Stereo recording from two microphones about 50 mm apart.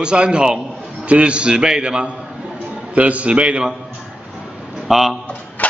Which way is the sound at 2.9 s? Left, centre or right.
Right.